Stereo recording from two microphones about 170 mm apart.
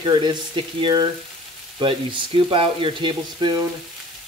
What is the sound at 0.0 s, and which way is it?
Frying, 25° right (ahead or behind).